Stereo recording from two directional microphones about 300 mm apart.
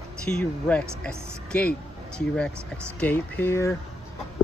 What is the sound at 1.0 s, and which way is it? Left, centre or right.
Speech, centre.